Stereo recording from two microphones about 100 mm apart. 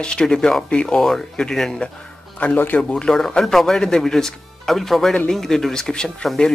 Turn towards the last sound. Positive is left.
turn(degrees=5)  # may be behind; listen again after turning